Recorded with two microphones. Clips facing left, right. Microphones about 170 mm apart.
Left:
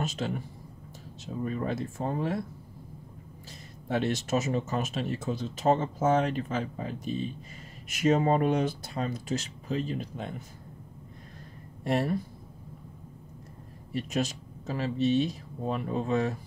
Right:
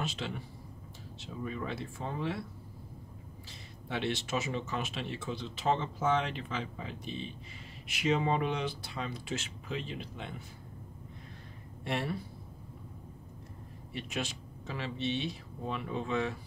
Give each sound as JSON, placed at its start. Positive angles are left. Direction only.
{"t": 0.0, "sound": "speech", "side_deg": 45}
{"t": 3.9, "sound": "speech", "side_deg": 45}
{"t": 11.8, "sound": "speech", "side_deg": 40}
{"t": 13.9, "sound": "speech", "side_deg": 40}